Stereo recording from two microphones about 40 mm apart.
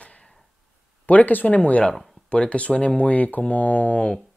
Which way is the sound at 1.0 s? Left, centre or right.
Left.